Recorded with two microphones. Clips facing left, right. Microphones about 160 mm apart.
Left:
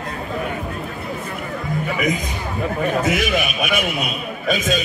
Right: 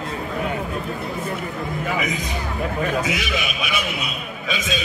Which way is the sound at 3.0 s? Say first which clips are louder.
Left 5 dB; 50° left (ahead or behind).